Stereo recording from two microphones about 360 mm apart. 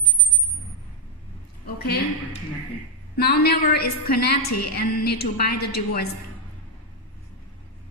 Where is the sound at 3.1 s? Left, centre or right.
Left.